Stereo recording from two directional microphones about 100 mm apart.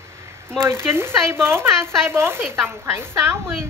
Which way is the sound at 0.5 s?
25° right (ahead or behind).